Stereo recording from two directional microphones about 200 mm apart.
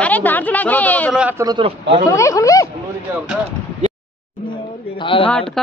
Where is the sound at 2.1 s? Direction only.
15° left (ahead or behind).